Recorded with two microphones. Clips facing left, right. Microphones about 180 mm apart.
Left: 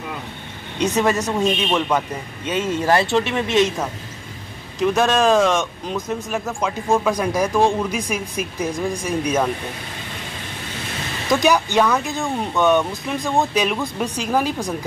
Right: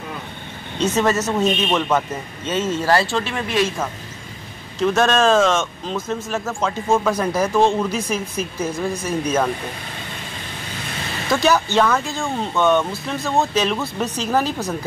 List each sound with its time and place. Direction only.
0.7 s speech: 15° left (ahead or behind)
2.4 s speech: 15° left (ahead or behind)
11.2 s speech: 15° left (ahead or behind)